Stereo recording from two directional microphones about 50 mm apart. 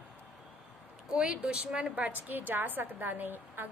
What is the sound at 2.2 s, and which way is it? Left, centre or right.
A woman's voice, right.